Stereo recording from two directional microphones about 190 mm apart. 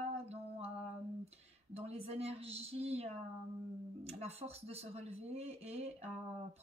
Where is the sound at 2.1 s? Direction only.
30° right (ahead or behind).